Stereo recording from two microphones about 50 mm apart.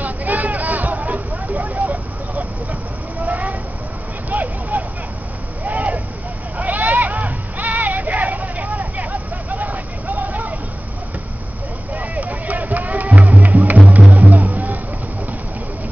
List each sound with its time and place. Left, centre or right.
0.0 s vehicle: right
6.6 s a sound: right
11.9 s music: right